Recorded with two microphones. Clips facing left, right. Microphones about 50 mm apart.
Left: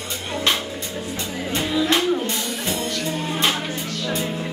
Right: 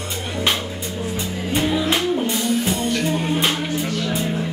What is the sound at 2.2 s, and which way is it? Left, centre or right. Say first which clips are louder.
Music: right 5 dB; centre.